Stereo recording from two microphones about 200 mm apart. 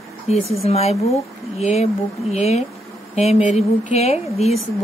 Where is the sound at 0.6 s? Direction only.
30° left (ahead or behind).